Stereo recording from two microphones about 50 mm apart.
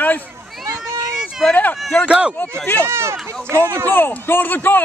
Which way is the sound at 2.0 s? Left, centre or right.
Right.